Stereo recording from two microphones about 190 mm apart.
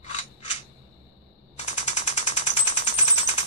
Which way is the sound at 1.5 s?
35° left (ahead or behind).